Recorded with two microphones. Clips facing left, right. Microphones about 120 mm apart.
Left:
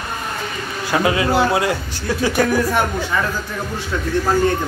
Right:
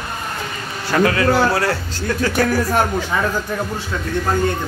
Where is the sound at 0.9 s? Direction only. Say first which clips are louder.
Right 1 dB; 15° left (ahead or behind).